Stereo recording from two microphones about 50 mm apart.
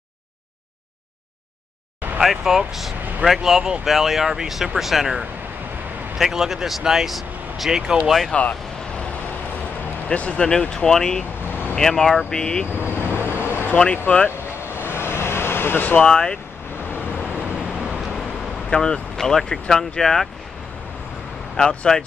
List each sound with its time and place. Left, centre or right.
2.1 s speech: centre
7.7 s speech: centre
8.3 s speech: left
10.0 s speech: left
12.8 s vehicle: left
14.0 s speech: left
14.9 s vehicle: left
15.8 s speech: left
16.1 s speech: centre
17.4 s vehicle: centre
18.7 s speech: centre
21.5 s speech: centre